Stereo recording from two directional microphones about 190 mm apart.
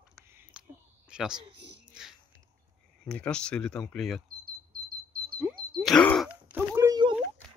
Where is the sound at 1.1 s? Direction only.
5° right (ahead or behind).